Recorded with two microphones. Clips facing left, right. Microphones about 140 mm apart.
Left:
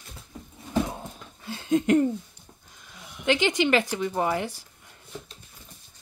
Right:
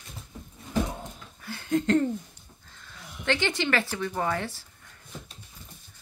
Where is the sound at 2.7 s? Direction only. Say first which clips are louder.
Right 1 dB; 15° left (ahead or behind).